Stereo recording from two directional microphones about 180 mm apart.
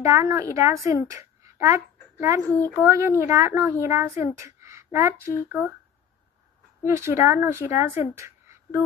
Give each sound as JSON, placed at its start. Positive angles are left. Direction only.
{"t": 0.0, "sound": "a woman's voice", "side_deg": -15}
{"t": 6.8, "sound": "speech", "side_deg": -15}